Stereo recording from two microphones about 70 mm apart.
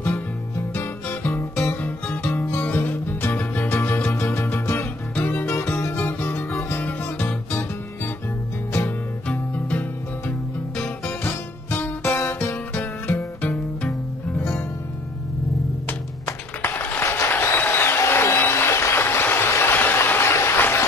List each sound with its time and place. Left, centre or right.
0.7 s music: left
9.3 s music: left
11.1 s music: left
12.7 s music: left
15.9 s music: left